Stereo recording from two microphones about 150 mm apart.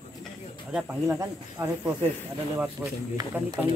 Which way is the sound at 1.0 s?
20° right (ahead or behind).